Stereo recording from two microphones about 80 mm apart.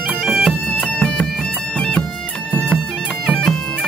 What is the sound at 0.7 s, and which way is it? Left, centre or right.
Music, centre.